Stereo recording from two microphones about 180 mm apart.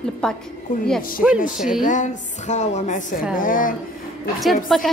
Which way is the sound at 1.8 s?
45° left (ahead or behind).